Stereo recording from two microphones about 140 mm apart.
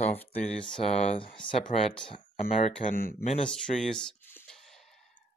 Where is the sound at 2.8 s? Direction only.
90° left.